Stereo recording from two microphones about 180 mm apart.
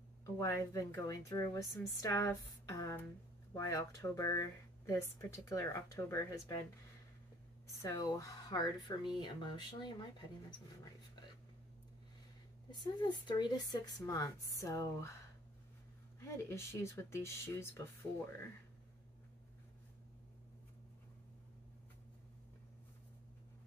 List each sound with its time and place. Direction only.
0.2 s speech: 15° left (ahead or behind)
7.8 s speech: 20° left (ahead or behind)
12.8 s speech: 25° left (ahead or behind)
16.2 s speech: 15° left (ahead or behind)